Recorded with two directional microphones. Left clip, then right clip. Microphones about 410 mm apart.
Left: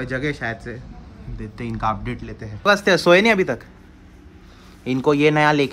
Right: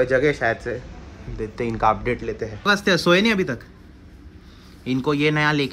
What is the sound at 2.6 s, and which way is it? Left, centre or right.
Speech, centre.